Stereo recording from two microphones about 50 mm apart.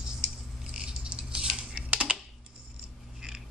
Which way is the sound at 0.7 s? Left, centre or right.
Centre.